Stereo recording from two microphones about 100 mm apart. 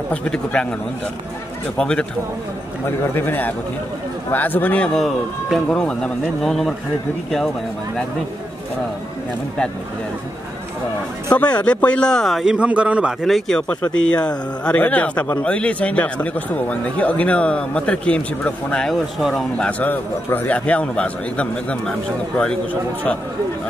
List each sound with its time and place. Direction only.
0.1 s speech: 10° left (ahead or behind)
1.8 s speech: 5° left (ahead or behind)
3.2 s a man's voice: 20° left (ahead or behind); by 7.5 s centre (ahead or behind)
11.3 s speech: 10° left (ahead or behind); by 13.1 s 10° right (ahead or behind)
13.2 s speech: 5° left (ahead or behind)
19.8 s speech: 20° left (ahead or behind)